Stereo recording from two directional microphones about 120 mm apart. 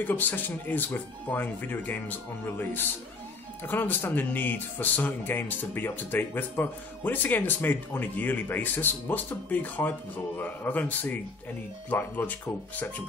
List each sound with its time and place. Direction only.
0.0 s speech: 15° left (ahead or behind)